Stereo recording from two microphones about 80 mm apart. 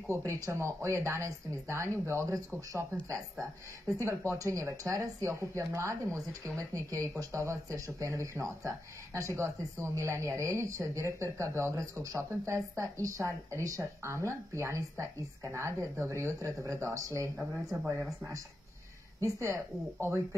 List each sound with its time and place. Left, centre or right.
0.3 s speech: right
19.2 s speech: right